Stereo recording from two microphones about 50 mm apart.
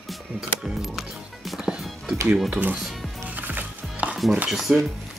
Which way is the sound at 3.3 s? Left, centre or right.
Right.